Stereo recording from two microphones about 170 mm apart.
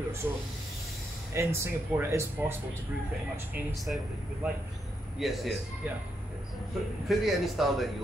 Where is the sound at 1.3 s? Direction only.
15° right (ahead or behind).